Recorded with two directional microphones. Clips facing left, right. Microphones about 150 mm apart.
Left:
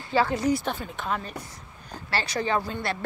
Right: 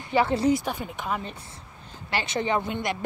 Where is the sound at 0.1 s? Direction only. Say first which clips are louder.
Right 2 dB; 25° right (ahead or behind).